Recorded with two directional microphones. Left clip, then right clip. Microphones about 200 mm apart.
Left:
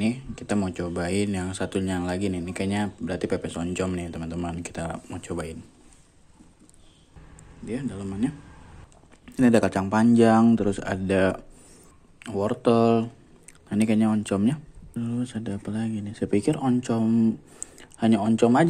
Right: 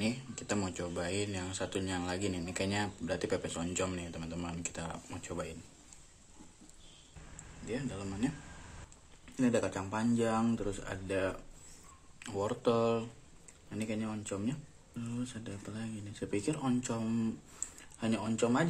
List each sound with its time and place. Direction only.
0.0 s speech: 20° left (ahead or behind)
7.6 s speech: 25° left (ahead or behind)
9.2 s speech: 40° left (ahead or behind)
12.2 s speech: 30° left (ahead or behind)
17.7 s speech: 35° left (ahead or behind)